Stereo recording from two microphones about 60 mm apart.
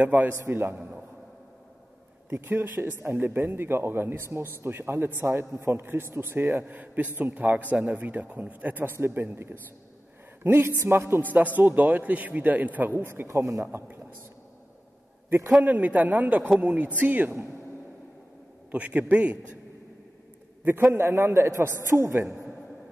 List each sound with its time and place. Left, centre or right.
0.0 s a man's voice: right
0.3 s speech: right
2.4 s speech: right
6.6 s a man's voice: right
8.9 s a man's voice: right
13.0 s a man's voice: right
13.7 s a man's voice: right
15.6 s a man's voice: right
18.7 s a man's voice: right
20.9 s a man's voice: right